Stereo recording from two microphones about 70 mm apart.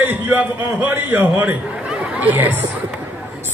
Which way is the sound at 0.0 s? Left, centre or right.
Right.